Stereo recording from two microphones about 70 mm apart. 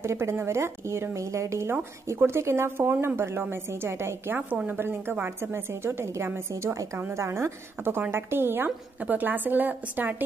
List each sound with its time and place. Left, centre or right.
0.0 s a woman's voice: right
6.5 s a woman's voice: right
7.0 s a woman's voice: right